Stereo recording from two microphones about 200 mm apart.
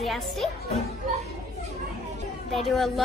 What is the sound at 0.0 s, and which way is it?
Speech, centre (ahead or behind).